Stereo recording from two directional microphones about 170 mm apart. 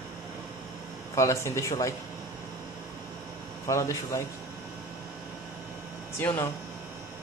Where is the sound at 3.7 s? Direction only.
15° left (ahead or behind).